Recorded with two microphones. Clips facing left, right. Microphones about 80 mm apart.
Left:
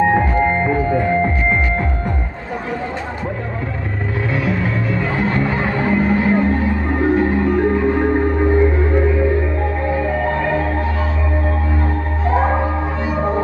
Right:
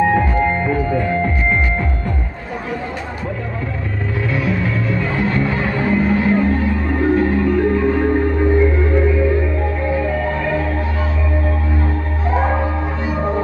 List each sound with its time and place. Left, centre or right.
0.0 s music: left
5.1 s music: left
12.4 s music: left